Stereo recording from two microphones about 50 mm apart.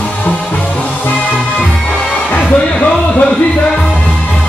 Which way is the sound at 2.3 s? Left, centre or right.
Left.